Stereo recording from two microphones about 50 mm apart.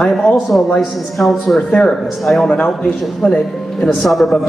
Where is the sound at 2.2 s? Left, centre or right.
Centre.